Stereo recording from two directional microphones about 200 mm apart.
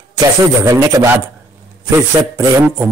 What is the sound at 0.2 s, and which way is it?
Speech, 15° right (ahead or behind).